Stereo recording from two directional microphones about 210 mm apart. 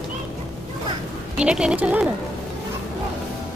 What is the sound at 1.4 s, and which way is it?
Speech, 5° right (ahead or behind).